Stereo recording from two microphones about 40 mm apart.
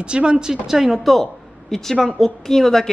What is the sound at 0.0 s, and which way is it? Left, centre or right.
Speech, right.